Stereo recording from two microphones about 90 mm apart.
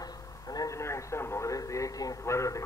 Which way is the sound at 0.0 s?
45° left (ahead or behind).